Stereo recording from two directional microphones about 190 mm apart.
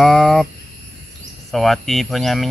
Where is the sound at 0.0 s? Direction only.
Centre (ahead or behind).